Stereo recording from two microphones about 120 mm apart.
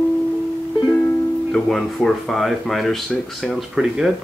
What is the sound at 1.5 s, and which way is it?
Speech, 5° left (ahead or behind).